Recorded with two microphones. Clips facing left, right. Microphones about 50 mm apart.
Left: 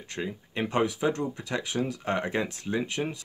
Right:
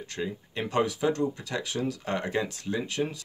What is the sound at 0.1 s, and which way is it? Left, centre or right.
Speech, left.